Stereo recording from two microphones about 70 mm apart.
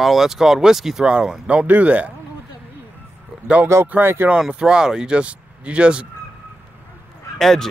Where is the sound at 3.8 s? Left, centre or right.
Right.